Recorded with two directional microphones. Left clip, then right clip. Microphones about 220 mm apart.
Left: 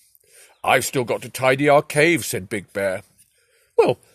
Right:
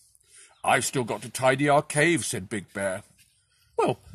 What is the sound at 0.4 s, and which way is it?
Speech, 45° left (ahead or behind).